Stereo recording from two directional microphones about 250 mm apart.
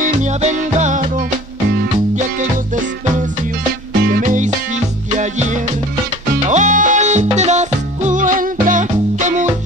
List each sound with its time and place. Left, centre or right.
0.0 s music: right
4.0 s music: right